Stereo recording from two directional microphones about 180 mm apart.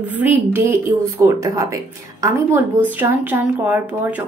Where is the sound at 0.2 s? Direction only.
10° right (ahead or behind).